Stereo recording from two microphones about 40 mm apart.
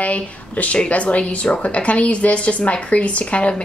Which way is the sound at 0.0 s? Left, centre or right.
Left.